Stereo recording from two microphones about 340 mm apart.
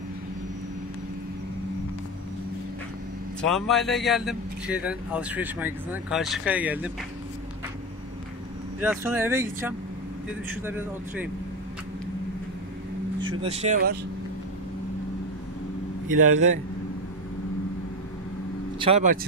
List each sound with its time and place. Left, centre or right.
3.3 s speech: centre
8.8 s speech: centre
13.2 s speech: centre
16.2 s a man's voice: right
18.8 s speech: centre